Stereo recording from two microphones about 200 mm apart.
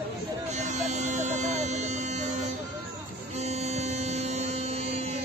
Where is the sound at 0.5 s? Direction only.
35° right (ahead or behind).